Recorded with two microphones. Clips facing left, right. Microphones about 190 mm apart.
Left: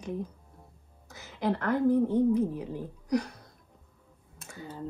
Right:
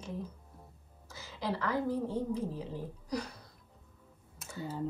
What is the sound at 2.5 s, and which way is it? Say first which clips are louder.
Speech: left 4 dB; 15° left (ahead or behind).